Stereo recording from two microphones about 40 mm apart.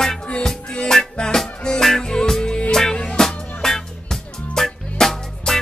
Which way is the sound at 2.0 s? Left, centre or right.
Centre.